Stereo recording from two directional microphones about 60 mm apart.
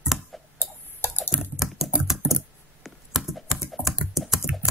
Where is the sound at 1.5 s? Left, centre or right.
Centre.